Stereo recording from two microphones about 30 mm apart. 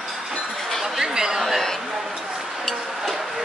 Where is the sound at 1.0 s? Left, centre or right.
Right.